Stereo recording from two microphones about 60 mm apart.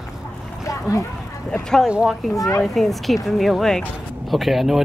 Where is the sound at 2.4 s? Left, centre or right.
Left.